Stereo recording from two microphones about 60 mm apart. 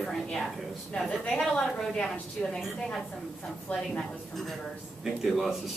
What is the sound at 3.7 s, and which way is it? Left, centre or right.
Speech, left.